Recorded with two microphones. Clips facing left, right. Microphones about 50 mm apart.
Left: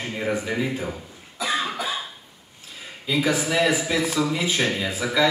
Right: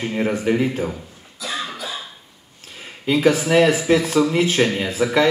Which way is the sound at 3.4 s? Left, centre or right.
Right.